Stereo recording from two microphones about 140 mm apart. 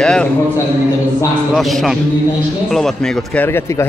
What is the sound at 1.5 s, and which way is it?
Speech, centre (ahead or behind).